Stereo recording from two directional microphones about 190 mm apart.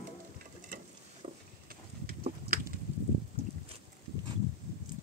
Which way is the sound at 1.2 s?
35° right (ahead or behind).